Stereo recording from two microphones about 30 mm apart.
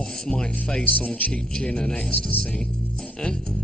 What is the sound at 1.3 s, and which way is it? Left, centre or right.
Speech, left.